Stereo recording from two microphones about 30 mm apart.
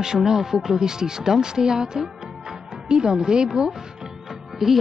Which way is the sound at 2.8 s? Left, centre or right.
Right.